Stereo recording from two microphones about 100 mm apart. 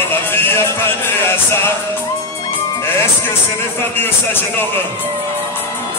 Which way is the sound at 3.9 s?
20° left (ahead or behind).